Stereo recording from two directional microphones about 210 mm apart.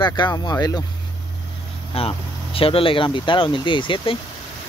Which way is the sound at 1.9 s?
25° left (ahead or behind).